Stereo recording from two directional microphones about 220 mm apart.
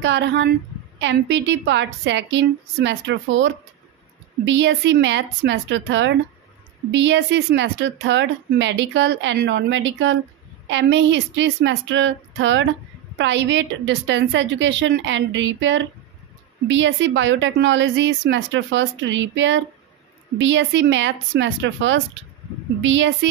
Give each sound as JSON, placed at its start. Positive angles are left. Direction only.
{"t": 0.0, "sound": "a woman's voice", "side_deg": -55}